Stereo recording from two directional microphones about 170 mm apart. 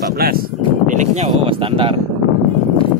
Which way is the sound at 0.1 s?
65° right (ahead or behind).